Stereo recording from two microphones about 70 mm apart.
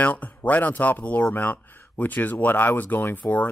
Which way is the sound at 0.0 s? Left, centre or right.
Left.